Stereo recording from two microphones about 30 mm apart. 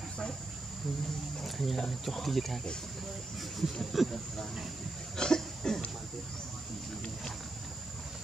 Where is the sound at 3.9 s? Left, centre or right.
Centre.